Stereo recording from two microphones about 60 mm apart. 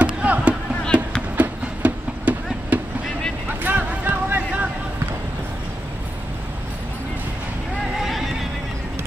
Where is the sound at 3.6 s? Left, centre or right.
Right.